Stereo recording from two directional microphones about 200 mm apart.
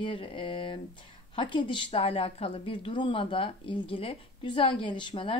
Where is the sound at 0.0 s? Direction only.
25° left (ahead or behind).